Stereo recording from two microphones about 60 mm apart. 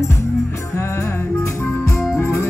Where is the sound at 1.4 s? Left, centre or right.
Left.